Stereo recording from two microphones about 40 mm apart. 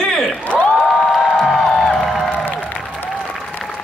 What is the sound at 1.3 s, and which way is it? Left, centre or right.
Music, centre.